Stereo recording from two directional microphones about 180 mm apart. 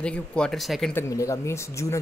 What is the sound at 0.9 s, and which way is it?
Speech, 15° left (ahead or behind).